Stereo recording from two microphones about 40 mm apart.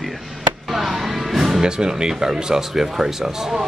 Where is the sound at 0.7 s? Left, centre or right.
Centre.